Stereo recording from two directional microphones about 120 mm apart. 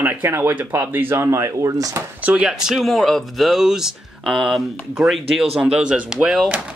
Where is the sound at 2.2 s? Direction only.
10° right (ahead or behind).